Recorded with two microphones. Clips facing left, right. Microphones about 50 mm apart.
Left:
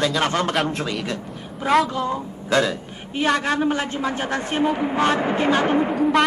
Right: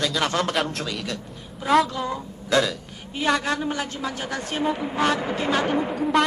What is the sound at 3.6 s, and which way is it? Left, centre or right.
A man's voice, left.